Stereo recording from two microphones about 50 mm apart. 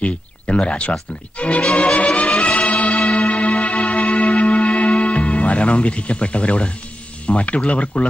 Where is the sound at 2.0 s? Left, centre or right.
Left.